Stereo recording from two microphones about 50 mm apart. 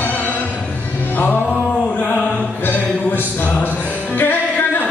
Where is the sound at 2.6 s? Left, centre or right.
Left.